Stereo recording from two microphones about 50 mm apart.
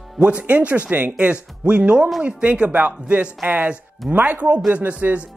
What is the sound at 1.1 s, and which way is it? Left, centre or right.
A man's voice, right.